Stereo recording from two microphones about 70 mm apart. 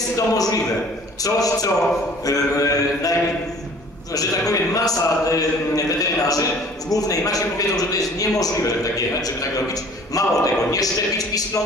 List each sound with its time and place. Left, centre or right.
0.3 s a man's voice: left
10.1 s a man's voice: left